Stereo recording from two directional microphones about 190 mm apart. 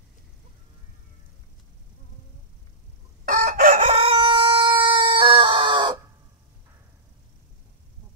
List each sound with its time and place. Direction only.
3.3 s crowing: 45° right (ahead or behind); by 5.9 s 25° right (ahead or behind)